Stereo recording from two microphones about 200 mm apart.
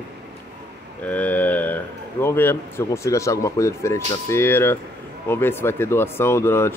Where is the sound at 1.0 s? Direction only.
10° left (ahead or behind).